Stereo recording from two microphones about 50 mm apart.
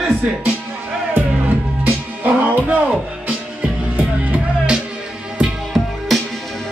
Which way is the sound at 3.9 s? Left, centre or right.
Right.